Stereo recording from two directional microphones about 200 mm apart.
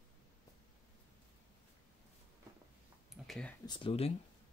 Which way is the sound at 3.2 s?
5° left (ahead or behind).